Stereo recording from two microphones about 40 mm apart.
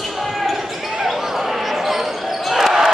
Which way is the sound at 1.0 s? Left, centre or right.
Centre.